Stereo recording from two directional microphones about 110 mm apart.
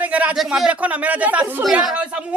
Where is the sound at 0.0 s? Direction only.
15° right (ahead or behind).